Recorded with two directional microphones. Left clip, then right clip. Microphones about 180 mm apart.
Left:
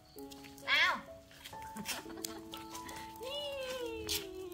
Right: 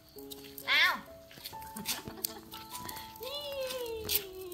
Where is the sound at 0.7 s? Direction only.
Centre (ahead or behind).